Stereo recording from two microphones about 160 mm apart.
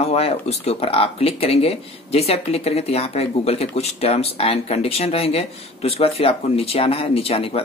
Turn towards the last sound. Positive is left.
turn(degrees=35)  # may be behind; listen again after turning